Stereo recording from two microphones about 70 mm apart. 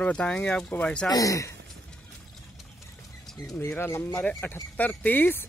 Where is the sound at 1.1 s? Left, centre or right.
Left.